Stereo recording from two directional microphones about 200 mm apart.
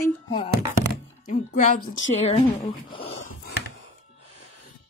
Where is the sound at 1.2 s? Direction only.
40° left (ahead or behind).